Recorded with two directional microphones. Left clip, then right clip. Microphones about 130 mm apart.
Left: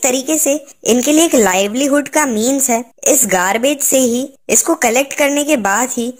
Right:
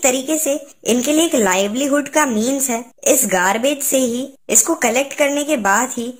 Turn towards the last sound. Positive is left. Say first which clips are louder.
# left 1 dB
turn(degrees=35)  # may be behind; listen again after turning